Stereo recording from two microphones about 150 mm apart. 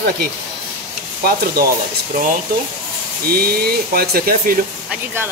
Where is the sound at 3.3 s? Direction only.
90° right.